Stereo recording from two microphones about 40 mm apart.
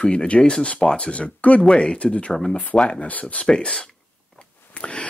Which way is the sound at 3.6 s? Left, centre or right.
Left.